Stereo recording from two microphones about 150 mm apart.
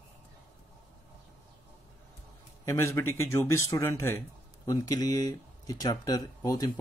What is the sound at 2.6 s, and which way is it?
Speech, 20° left (ahead or behind).